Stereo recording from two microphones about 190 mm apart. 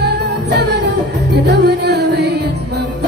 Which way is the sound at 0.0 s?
60° right (ahead or behind).